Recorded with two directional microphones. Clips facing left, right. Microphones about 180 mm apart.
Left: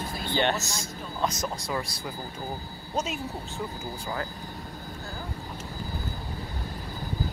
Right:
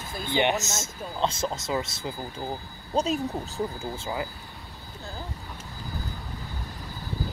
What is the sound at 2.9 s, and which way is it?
Speech, 35° right (ahead or behind).